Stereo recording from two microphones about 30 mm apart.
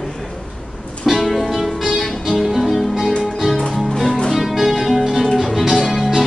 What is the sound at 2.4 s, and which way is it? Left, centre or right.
Music, centre.